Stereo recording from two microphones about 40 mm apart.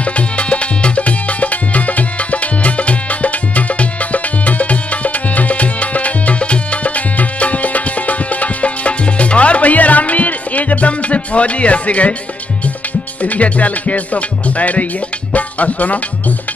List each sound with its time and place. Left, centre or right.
0.0 s music: left
13.2 s music: left